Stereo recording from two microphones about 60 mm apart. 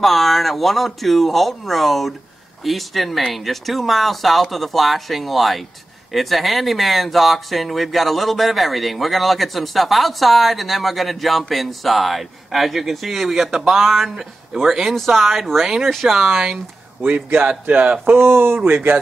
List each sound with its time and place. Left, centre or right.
0.0 s speech: centre
17.0 s a man's voice: right
18.0 s speech: right